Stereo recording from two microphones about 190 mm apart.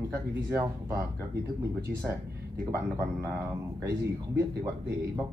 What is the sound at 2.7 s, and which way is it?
Speech, 15° right (ahead or behind).